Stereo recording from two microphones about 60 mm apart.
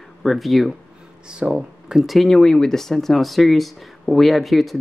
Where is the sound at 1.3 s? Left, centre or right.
Centre.